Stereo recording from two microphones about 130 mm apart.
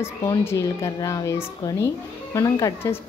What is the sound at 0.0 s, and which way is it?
Speech, 20° left (ahead or behind).